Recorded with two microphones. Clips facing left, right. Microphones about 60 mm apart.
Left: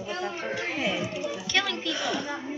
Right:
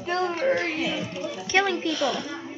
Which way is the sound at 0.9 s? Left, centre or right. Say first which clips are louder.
Even; centre.